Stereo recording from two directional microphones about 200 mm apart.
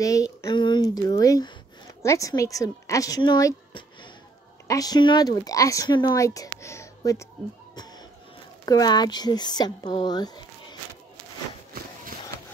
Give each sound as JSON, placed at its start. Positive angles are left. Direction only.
{"t": 0.0, "sound": "speech", "side_deg": 15}
{"t": 8.6, "sound": "speech", "side_deg": 20}